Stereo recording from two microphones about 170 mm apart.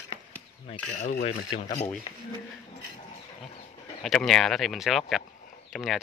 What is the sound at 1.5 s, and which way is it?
Speech, 45° left (ahead or behind).